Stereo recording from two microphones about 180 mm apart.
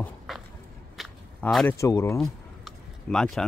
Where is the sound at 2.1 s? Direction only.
5° left (ahead or behind).